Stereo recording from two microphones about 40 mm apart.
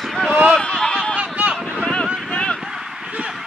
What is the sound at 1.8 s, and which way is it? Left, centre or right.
Boat, left.